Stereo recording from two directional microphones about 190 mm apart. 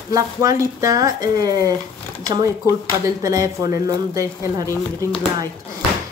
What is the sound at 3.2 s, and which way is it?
Speech, 15° right (ahead or behind).